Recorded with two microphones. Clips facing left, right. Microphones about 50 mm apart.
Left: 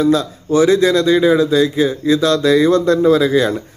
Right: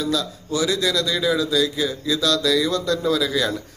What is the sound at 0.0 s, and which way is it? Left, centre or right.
Speech, left.